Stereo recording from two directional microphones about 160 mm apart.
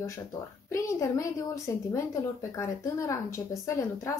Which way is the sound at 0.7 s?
15° left (ahead or behind).